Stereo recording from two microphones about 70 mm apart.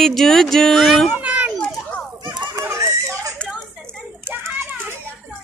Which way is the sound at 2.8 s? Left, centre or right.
Right.